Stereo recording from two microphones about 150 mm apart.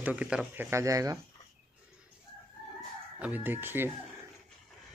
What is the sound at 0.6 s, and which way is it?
Speech, 20° right (ahead or behind).